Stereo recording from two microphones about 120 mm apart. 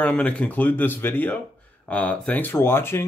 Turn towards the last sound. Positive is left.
turn(degrees=20)  # may be behind; listen again after turning